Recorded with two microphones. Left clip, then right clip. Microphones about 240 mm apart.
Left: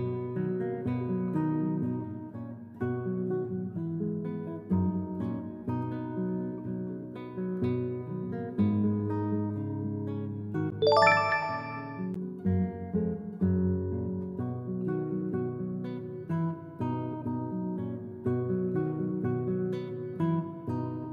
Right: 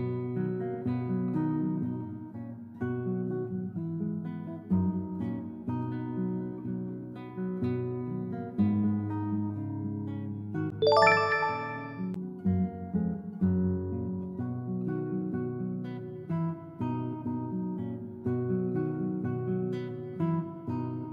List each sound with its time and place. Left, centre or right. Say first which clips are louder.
0.0 s music: left 1 dB; left
2.8 s music: left 1 dB; left
5.2 s music: left 1 dB; left
7.3 s music: left 2 dB; left
10.8 s music: even; centre
12.4 s guitar: even; left
14.4 s music: even; left
17.7 s music: left 1 dB; left